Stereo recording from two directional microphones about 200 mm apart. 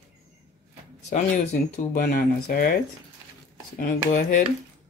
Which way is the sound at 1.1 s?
35° left (ahead or behind).